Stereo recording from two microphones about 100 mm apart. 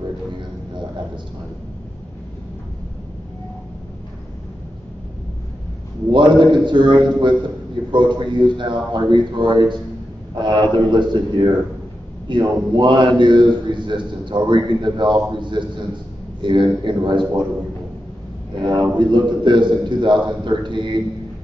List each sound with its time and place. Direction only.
6.1 s a man's voice: 50° right (ahead or behind)
18.5 s a man's voice: 50° right (ahead or behind)